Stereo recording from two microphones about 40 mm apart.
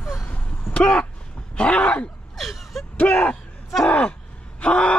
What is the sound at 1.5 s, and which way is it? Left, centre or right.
Roaring cats, left.